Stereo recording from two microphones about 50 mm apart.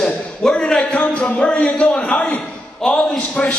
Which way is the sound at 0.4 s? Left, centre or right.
Centre.